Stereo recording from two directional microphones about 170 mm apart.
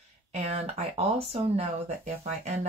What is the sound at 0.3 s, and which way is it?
Speech, 40° right (ahead or behind).